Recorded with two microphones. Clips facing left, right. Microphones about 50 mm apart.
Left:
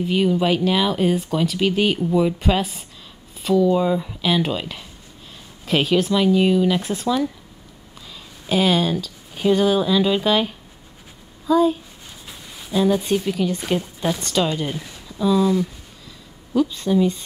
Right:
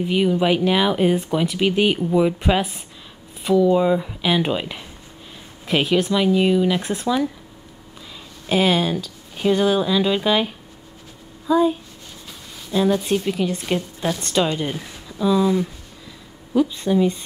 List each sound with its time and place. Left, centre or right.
0.0 s speech: centre
8.5 s speech: centre
12.3 s a sound: centre
12.9 s speech: centre
13.2 s speech: centre
16.5 s speech: centre